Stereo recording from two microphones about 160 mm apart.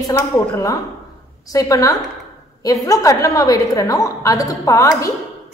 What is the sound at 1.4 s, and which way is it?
A woman's voice, 20° left (ahead or behind).